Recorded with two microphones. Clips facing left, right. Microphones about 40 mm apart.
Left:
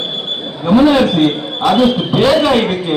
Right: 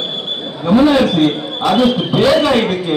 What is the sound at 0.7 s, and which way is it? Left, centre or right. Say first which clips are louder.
A man's voice: left 1 dB; centre.